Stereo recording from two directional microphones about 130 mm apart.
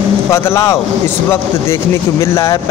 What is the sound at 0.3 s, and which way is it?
Speech, 20° left (ahead or behind).